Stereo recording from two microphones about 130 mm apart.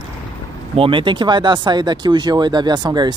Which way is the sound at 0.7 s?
40° right (ahead or behind).